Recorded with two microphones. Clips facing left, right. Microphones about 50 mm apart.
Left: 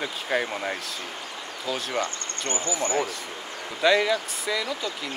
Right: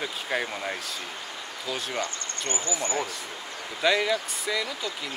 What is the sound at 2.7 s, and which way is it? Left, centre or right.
Speech, left.